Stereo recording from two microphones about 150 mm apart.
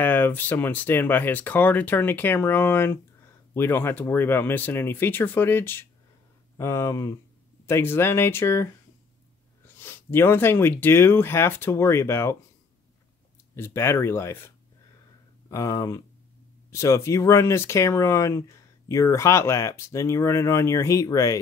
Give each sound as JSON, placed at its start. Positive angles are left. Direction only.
{"t": 0.0, "sound": "speech", "side_deg": 15}
{"t": 9.7, "sound": "speech", "side_deg": 15}
{"t": 13.6, "sound": "speech", "side_deg": 15}